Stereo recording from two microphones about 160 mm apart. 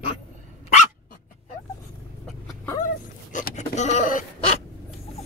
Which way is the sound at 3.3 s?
50° left (ahead or behind).